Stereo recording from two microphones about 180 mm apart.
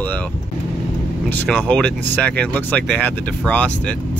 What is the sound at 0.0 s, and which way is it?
Vehicle, 10° left (ahead or behind).